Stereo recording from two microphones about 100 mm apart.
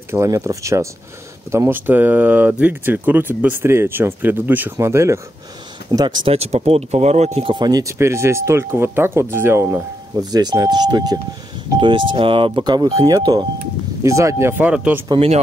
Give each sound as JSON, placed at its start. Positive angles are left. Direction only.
{"t": 0.1, "sound": "speech", "side_deg": -30}
{"t": 1.7, "sound": "speech", "side_deg": -20}
{"t": 5.9, "sound": "speech", "side_deg": -45}
{"t": 6.2, "sound": "speech", "side_deg": -90}
{"t": 7.5, "sound": "speech", "side_deg": -40}
{"t": 8.0, "sound": "speech", "side_deg": -30}
{"t": 10.1, "sound": "speech", "side_deg": -45}
{"t": 11.8, "sound": "speech", "side_deg": -55}
{"t": 14.0, "sound": "speech", "side_deg": -30}
{"t": 14.7, "sound": "speech", "side_deg": -10}
{"t": 15.1, "sound": "speech", "side_deg": -90}